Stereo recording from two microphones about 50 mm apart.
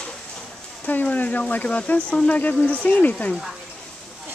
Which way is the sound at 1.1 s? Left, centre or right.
Left.